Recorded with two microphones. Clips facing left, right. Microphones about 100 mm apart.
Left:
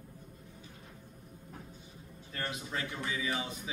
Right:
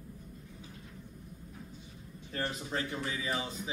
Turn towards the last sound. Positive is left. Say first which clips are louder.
# even
turn(degrees=-35)  # may be behind; listen again after turning